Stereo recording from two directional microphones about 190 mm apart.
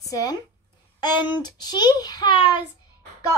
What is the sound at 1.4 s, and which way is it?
Speech, 20° left (ahead or behind).